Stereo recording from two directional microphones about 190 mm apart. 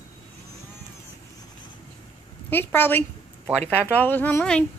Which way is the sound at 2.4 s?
10° left (ahead or behind).